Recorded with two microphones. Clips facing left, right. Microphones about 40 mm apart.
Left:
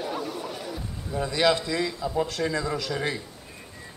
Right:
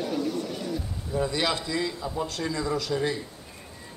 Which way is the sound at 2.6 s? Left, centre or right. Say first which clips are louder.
Right 1 dB; left.